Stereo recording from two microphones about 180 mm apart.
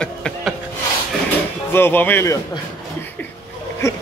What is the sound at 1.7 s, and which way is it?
Speech, 10° left (ahead or behind).